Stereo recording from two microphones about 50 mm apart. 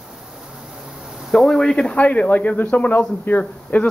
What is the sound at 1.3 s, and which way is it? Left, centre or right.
Speech, centre.